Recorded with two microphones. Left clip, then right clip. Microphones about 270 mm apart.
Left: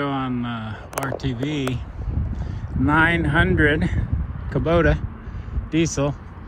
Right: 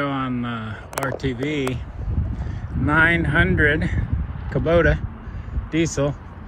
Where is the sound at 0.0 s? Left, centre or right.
Centre.